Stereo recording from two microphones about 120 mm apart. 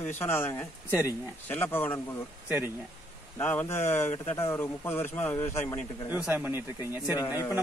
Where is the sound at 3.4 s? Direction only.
15° left (ahead or behind).